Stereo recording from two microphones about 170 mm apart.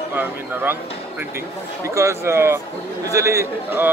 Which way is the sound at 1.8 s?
15° right (ahead or behind).